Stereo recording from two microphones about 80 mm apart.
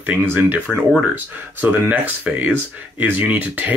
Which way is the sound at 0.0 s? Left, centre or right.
Right.